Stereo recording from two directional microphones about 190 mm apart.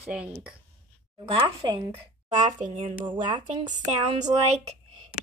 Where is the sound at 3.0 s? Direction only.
25° right (ahead or behind).